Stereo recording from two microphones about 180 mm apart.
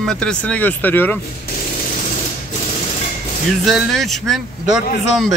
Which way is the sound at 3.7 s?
Centre (ahead or behind).